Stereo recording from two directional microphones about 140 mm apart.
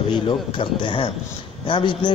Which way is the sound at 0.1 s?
35° left (ahead or behind).